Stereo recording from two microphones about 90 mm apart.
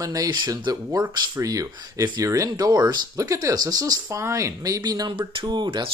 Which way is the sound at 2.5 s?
50° right (ahead or behind).